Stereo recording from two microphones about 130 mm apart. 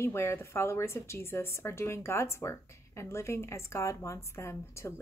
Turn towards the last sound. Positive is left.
turn(degrees=20)  # may be behind; listen again after turning